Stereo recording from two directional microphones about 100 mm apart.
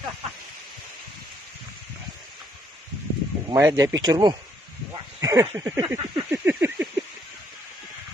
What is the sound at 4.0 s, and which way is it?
Speech, 45° right (ahead or behind).